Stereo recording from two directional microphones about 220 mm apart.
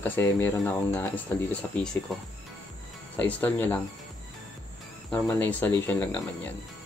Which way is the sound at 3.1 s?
5° left (ahead or behind).